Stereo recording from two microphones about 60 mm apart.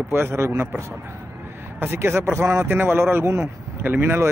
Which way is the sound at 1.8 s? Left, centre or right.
Right.